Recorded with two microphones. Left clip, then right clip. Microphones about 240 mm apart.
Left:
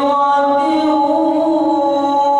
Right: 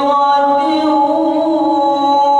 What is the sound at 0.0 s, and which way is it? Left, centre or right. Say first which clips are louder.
Music: right 2 dB; centre.